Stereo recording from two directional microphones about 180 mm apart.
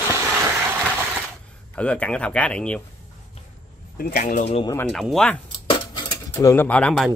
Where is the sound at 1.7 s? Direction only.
5° left (ahead or behind).